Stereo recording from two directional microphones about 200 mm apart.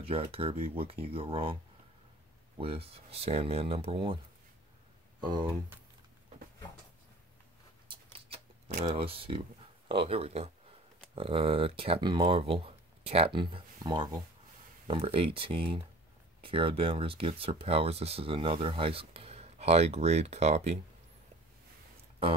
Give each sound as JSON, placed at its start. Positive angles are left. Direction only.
{"t": 0.0, "sound": "speech", "side_deg": -30}
{"t": 7.9, "sound": "rodents", "side_deg": -30}
{"t": 8.8, "sound": "speech", "side_deg": -30}